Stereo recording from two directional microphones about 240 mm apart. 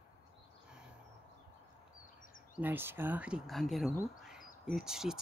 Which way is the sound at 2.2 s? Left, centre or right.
Left.